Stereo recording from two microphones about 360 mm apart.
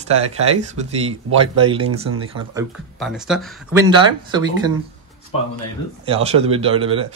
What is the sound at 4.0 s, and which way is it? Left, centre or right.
Speech, centre.